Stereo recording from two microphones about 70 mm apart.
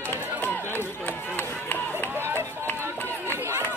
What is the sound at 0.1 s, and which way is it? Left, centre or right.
Run, left.